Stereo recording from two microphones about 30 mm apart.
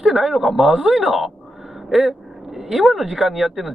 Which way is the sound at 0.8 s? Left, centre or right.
Right.